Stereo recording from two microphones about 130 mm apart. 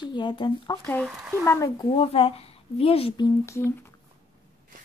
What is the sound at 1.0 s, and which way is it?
Speech, 15° right (ahead or behind).